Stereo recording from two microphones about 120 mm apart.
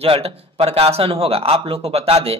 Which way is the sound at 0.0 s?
55° right (ahead or behind).